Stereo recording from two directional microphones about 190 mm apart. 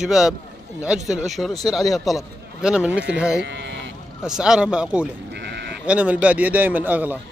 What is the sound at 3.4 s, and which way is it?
Speech, 70° right (ahead or behind).